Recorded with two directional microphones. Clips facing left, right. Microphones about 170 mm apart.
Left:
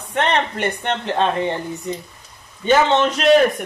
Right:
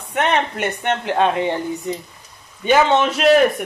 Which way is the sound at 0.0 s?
10° right (ahead or behind).